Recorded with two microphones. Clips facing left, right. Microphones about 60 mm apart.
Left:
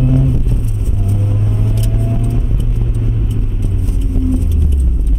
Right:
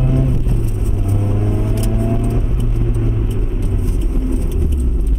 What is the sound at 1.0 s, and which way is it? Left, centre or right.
Vehicle, right.